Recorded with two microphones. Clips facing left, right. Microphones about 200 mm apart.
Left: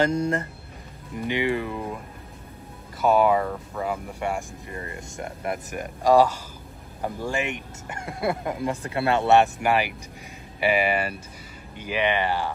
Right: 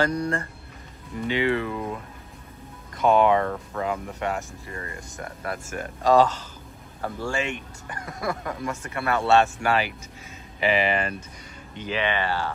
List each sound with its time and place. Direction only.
0.0 s speech: 20° left (ahead or behind); by 2.0 s 5° left (ahead or behind)
3.0 s speech: 5° left (ahead or behind); by 9.2 s 30° left (ahead or behind)
9.2 s speech: 15° left (ahead or behind)